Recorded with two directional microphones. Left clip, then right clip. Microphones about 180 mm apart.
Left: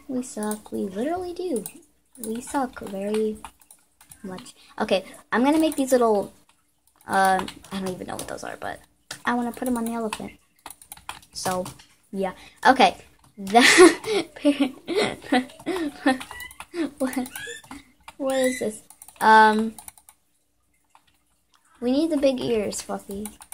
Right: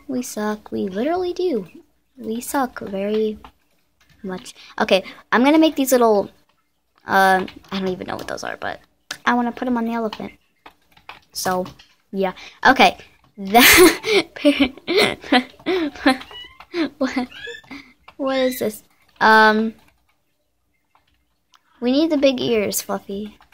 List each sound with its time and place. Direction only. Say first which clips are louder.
0.1 s a woman's voice: right 5 dB; 20° right (ahead or behind)
4.3 s a woman's voice: right 8 dB; 15° right (ahead or behind)
11.3 s a woman's voice: right 5 dB; 15° right (ahead or behind)
21.5 s speech: right 4 dB; 15° right (ahead or behind)